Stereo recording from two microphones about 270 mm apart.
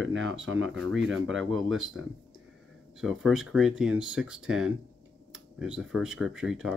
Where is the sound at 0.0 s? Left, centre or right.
Right.